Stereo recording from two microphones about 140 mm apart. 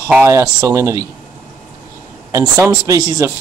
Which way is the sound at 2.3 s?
20° right (ahead or behind).